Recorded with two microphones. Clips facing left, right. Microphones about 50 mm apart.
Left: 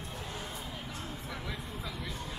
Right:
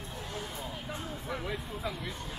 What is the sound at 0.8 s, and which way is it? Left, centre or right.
Music, centre.